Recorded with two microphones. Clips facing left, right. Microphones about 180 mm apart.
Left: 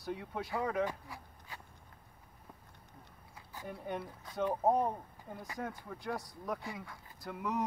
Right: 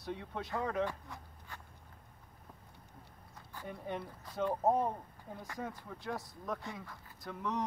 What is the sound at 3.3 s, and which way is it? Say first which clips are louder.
Speech: left 1 dB; 5° left (ahead or behind).